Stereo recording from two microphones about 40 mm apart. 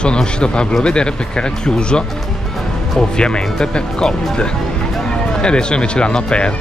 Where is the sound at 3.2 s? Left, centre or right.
Left.